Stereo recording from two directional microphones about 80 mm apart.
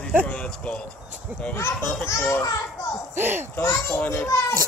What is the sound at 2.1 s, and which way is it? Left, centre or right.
Speech, left.